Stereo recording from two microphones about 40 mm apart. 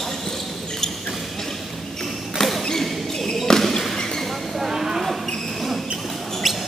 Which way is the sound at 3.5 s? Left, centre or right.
Centre.